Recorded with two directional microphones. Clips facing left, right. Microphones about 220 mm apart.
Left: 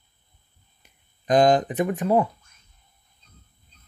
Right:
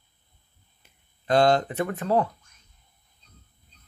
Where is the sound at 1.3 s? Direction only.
15° left (ahead or behind).